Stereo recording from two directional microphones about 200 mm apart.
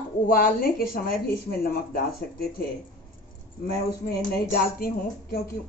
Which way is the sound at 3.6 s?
50° left (ahead or behind).